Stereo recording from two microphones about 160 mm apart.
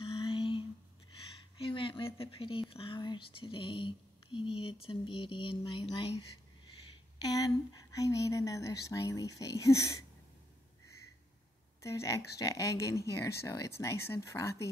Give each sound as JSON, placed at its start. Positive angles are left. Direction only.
{"t": 0.0, "sound": "a sound", "side_deg": 35}
{"t": 2.7, "sound": "speech", "side_deg": 35}
{"t": 7.2, "sound": "speech", "side_deg": 25}
{"t": 11.8, "sound": "speech", "side_deg": 20}